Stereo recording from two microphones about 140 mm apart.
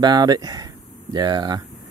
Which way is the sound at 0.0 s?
30° right (ahead or behind).